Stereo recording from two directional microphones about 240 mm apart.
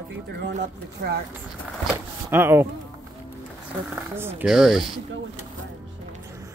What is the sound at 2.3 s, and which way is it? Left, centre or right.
Speech, centre.